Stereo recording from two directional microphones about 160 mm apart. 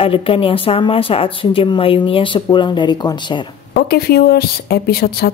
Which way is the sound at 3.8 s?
75° left (ahead or behind).